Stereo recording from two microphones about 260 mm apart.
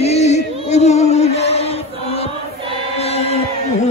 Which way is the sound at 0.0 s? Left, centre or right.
Left.